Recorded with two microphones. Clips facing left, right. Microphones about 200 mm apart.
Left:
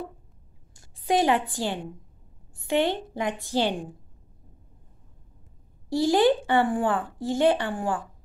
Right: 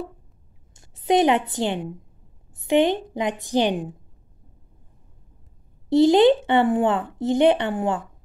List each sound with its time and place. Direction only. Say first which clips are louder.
0.7 s a woman's voice: right 5 dB; 20° right (ahead or behind)
5.9 s speech: right 6 dB; 20° right (ahead or behind)